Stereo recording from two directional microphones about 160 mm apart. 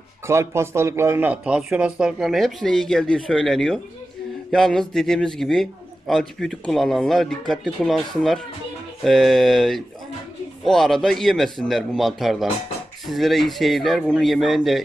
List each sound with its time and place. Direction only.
0.3 s a man's voice: 15° right (ahead or behind); by 14.8 s centre (ahead or behind)